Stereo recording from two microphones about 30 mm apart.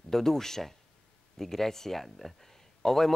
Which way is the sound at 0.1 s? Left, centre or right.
Centre.